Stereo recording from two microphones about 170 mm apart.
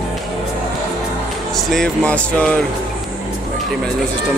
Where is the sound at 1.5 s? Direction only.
5° left (ahead or behind).